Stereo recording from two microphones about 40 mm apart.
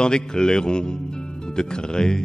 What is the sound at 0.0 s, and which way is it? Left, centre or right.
A man's voice, left.